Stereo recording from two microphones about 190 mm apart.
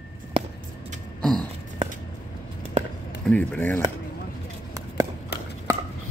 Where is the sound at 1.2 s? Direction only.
5° left (ahead or behind).